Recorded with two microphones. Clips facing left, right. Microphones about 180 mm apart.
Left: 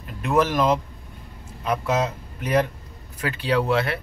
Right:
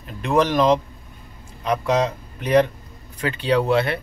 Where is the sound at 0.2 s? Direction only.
5° left (ahead or behind).